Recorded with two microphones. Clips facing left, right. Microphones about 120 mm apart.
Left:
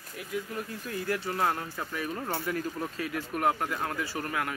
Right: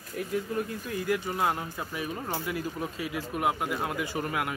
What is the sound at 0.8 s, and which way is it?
Speech, 15° right (ahead or behind).